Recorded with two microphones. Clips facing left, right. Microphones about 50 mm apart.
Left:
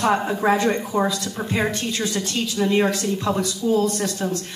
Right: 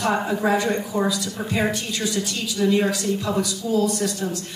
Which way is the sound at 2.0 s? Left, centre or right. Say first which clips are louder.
Left 1 dB; left.